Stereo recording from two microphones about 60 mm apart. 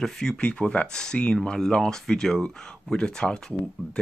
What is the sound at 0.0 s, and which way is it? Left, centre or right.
Speech, centre.